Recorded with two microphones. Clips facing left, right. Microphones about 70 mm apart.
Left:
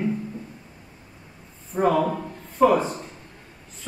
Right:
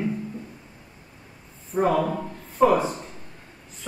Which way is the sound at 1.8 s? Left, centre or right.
Centre.